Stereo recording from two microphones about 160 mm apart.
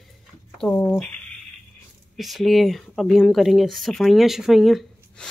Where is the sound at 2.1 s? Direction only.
Centre (ahead or behind).